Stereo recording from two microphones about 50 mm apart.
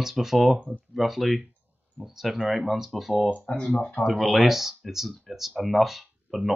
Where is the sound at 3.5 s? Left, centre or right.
Centre.